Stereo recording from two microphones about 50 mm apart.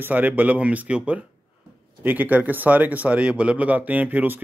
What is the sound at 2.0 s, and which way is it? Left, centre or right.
Speech, right.